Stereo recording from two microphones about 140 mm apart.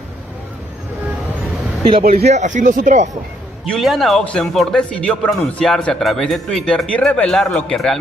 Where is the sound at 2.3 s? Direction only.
60° right (ahead or behind).